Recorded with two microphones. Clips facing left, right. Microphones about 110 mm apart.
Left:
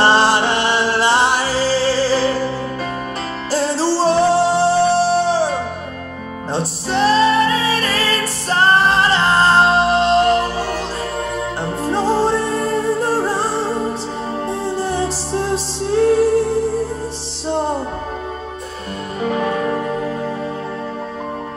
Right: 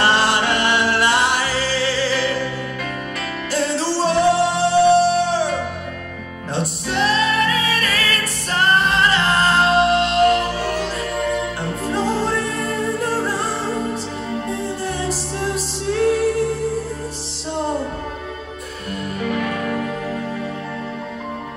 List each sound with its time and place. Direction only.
0.0 s music: 30° left (ahead or behind)
3.5 s music: 35° left (ahead or behind)
14.5 s music: 30° left (ahead or behind)
19.1 s music: 30° left (ahead or behind)